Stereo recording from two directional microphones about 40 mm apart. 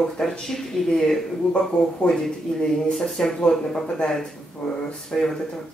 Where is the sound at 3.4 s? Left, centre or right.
Left.